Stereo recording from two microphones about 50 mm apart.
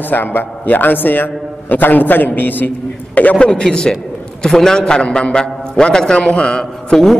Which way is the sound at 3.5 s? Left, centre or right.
Centre.